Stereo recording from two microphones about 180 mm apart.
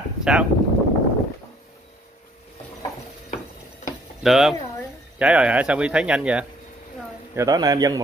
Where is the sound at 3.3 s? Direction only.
45° left (ahead or behind).